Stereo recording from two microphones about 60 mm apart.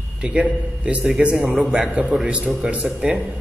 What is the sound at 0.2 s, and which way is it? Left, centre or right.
A man's voice, right.